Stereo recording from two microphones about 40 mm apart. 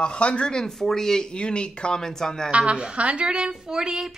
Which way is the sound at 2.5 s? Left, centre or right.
Right.